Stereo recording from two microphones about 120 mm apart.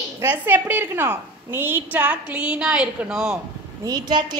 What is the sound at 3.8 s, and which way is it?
Speech, 35° right (ahead or behind).